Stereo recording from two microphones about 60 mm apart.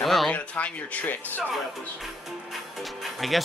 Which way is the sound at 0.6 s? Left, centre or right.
Left.